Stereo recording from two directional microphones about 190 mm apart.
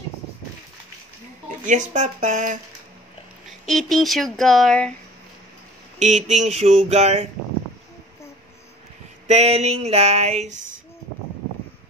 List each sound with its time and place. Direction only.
1.6 s speech: 40° right (ahead or behind)
3.4 s speech: centre (ahead or behind)
5.9 s speech: 40° right (ahead or behind)
9.3 s speech: 35° right (ahead or behind)